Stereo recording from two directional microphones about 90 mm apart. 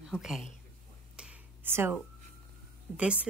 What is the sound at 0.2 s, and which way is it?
Speech, 5° right (ahead or behind).